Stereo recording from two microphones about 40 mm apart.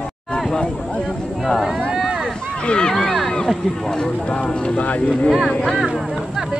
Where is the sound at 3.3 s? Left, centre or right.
Centre.